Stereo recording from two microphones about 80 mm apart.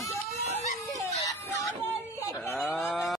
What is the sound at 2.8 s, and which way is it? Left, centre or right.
Cattle, centre.